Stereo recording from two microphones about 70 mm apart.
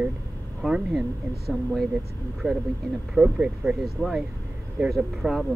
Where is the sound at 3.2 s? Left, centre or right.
Centre.